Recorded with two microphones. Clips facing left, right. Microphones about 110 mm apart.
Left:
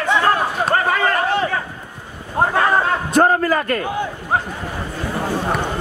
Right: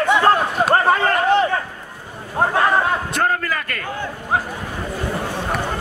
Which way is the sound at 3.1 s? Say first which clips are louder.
Left 6 dB; 30° left (ahead or behind).